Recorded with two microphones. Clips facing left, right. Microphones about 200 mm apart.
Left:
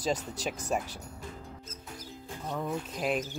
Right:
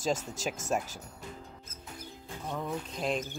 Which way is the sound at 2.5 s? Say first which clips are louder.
Left 2 dB; 5° left (ahead or behind).